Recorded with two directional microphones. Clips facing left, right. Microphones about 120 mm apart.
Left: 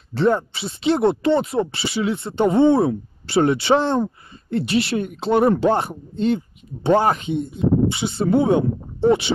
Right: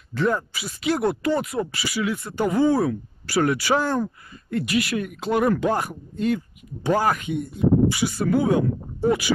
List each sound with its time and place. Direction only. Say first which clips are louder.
0.1 s speech: left 5 dB; 30° left (ahead or behind)